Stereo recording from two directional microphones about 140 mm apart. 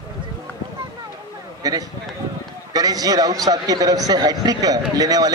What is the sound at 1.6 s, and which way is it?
A man's voice, 25° right (ahead or behind).